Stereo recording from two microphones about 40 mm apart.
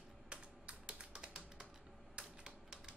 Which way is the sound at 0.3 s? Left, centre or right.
Right.